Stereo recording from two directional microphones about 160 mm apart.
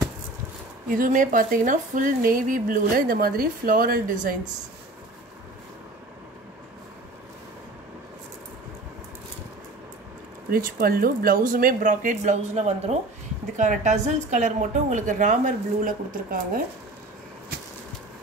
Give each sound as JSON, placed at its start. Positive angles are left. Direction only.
{"t": 0.8, "sound": "speech", "side_deg": -55}
{"t": 10.5, "sound": "a woman's voice", "side_deg": -65}